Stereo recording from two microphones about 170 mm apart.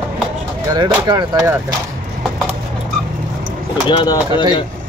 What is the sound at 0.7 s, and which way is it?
Speech, 25° right (ahead or behind).